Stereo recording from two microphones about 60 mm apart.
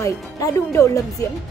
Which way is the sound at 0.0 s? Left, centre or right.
Left.